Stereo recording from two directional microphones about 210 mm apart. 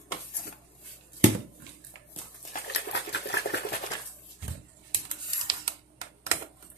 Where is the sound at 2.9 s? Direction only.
55° left (ahead or behind).